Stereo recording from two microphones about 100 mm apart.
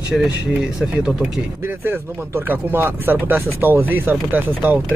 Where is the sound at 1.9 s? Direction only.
20° right (ahead or behind).